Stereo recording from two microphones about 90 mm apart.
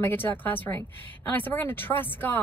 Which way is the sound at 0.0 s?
20° left (ahead or behind).